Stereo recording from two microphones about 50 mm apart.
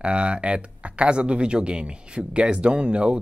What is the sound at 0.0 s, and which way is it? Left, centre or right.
Speech, right.